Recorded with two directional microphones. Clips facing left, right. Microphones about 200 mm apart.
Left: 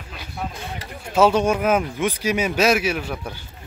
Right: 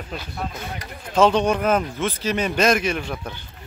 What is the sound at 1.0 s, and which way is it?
Speech, 10° left (ahead or behind).